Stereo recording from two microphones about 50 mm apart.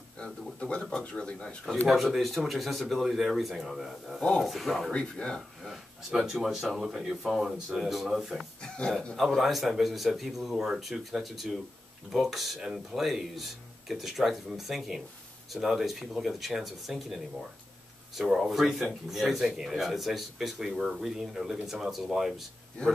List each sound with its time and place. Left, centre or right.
0.2 s speech: left
1.9 s speech: centre
4.9 s speech: centre
6.0 s speech: centre
8.4 s speech: centre
9.2 s speech: centre